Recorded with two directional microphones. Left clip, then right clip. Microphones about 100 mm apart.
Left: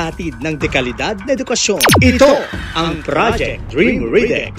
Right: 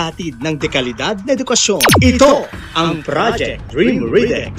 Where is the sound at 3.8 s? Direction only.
60° left (ahead or behind).